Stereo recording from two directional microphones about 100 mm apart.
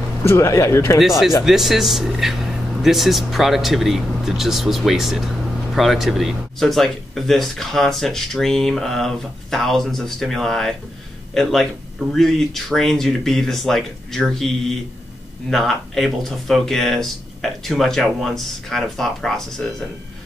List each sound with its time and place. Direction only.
0.2 s speech: 30° left (ahead or behind)
1.4 s speech: centre (ahead or behind)
15.5 s speech: centre (ahead or behind)